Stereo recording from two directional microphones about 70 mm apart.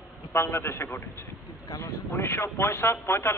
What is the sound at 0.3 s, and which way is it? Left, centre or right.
Speech, left.